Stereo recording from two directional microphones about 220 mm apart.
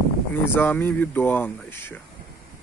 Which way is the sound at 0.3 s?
10° left (ahead or behind).